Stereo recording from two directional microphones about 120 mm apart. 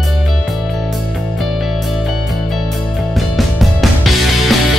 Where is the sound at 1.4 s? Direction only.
Centre (ahead or behind).